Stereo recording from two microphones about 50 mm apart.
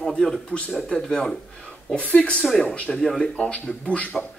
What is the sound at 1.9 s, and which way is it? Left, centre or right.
Speech, left.